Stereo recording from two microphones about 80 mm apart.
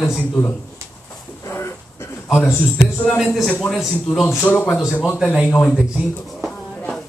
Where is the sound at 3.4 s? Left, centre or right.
Centre.